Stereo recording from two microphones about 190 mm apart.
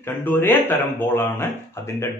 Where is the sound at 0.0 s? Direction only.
10° left (ahead or behind).